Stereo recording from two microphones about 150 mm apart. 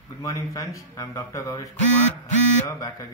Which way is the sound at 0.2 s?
20° left (ahead or behind).